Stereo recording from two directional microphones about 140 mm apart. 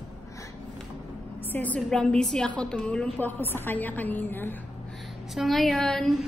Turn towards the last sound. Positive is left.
turn(degrees=5)  # may be behind; listen again after turning